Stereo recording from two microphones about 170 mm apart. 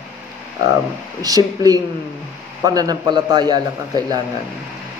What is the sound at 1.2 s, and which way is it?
A man's voice, 20° right (ahead or behind).